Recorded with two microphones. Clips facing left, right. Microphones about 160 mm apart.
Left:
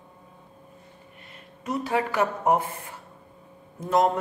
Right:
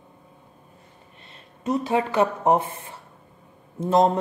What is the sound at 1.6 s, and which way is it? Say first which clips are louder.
A woman's voice: right 3 dB; 25° right (ahead or behind).